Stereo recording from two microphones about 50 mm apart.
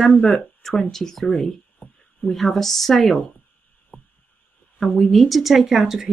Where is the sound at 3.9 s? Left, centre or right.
Left.